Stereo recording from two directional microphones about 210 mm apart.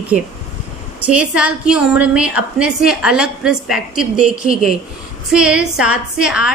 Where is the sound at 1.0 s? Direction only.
5° right (ahead or behind).